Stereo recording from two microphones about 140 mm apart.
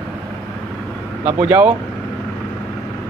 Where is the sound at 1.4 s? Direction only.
10° right (ahead or behind).